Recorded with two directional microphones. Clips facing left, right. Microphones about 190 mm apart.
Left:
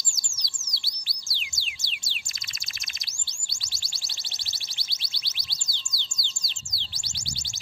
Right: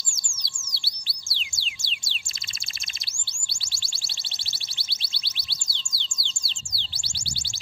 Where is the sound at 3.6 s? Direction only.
30° right (ahead or behind).